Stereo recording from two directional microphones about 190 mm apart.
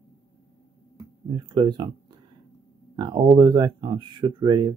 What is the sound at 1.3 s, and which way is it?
Speech, 25° right (ahead or behind).